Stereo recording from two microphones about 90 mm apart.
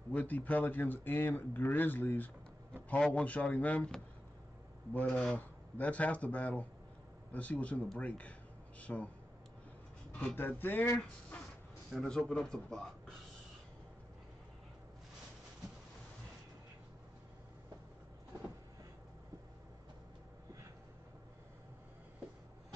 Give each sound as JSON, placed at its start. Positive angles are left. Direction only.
{"t": 0.1, "sound": "speech", "side_deg": 20}
{"t": 5.0, "sound": "speech", "side_deg": 10}
{"t": 10.1, "sound": "speech", "side_deg": 20}
{"t": 11.9, "sound": "speech", "side_deg": 0}